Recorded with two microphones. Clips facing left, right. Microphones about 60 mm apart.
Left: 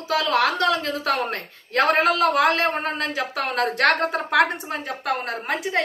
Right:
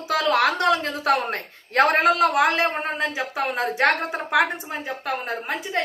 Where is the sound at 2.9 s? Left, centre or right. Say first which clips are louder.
Even; centre.